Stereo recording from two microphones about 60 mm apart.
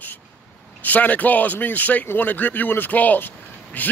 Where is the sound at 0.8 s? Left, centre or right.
Left.